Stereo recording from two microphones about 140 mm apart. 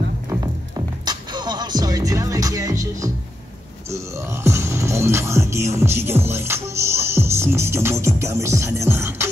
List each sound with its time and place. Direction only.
0.3 s music: 25° right (ahead or behind)